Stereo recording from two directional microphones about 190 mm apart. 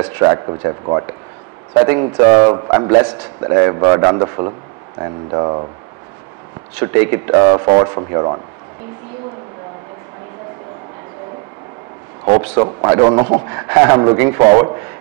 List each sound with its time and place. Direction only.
0.0 s a man's voice: 20° right (ahead or behind)
2.5 s a man's voice: 25° right (ahead or behind)
6.8 s a man's voice: 15° right (ahead or behind)
12.3 s a man's voice: 15° right (ahead or behind)